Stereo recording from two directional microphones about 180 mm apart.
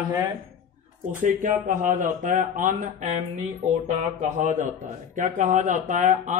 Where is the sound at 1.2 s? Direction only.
50° right (ahead or behind).